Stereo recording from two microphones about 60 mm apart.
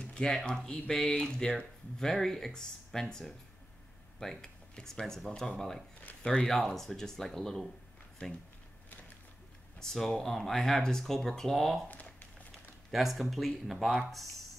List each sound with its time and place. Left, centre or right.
0.0 s speech: centre
9.8 s speech: centre
11.9 s a sound: left
12.9 s speech: centre